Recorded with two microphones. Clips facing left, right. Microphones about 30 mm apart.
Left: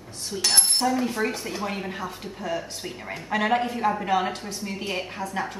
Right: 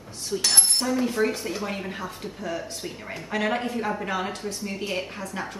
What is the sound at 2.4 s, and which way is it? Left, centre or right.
Speech, centre.